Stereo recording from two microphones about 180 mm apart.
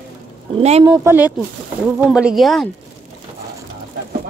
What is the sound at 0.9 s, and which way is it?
A woman's voice, 10° right (ahead or behind).